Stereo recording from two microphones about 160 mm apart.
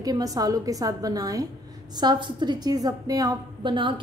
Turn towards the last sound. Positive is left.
turn(degrees=-30)  # may be behind; listen again after turning